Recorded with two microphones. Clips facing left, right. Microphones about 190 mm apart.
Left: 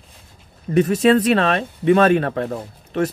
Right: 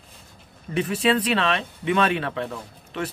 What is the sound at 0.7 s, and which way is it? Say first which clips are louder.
Speech: left 7 dB; 45° left (ahead or behind).